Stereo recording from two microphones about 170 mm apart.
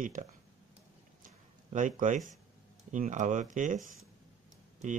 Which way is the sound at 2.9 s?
50° right (ahead or behind).